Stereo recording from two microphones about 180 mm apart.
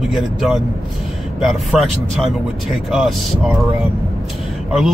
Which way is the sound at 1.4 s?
Centre (ahead or behind).